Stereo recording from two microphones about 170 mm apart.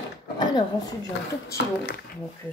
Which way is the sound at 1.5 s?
65° left (ahead or behind).